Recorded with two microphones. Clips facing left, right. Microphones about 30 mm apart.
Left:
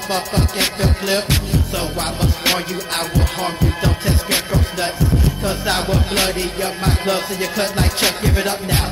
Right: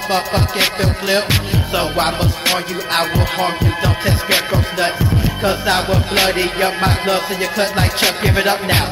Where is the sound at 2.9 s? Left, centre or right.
Centre.